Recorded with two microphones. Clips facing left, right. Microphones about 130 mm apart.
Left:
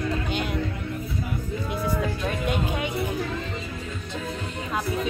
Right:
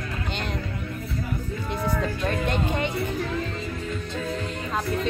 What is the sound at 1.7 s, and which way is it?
Music, 10° left (ahead or behind).